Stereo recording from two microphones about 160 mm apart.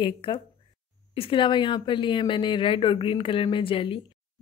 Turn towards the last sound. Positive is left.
turn(degrees=35)  # may be behind; listen again after turning